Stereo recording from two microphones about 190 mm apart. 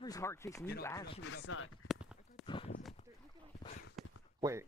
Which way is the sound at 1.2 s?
80° left.